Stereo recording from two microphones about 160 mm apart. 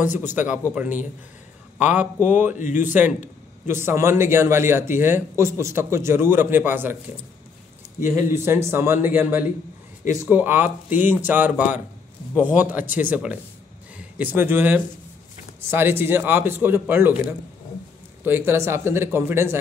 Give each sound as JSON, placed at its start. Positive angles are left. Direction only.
{"t": 0.0, "sound": "a man's voice", "side_deg": -10}
{"t": 2.5, "sound": "speech", "side_deg": 50}
{"t": 2.9, "sound": "a man's voice", "side_deg": -10}
{"t": 8.3, "sound": "a man's voice", "side_deg": -15}
{"t": 18.2, "sound": "a man's voice", "side_deg": -15}